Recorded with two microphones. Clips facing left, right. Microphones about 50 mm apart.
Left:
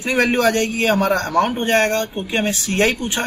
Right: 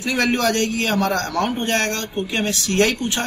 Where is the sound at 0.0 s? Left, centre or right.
Left.